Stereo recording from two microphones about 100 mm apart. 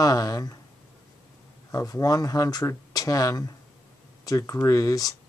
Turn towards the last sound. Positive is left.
turn(degrees=35)  # may be behind; listen again after turning